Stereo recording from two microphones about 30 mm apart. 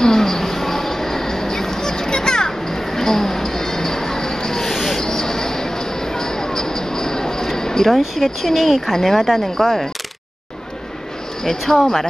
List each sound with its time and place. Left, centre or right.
0.0 s music: centre
4.6 s a sound: centre
5.0 s train: centre
6.1 s a sound: left
7.9 s speech: centre
11.6 s speech: centre